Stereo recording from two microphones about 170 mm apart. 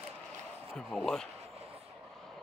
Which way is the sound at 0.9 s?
5° left (ahead or behind).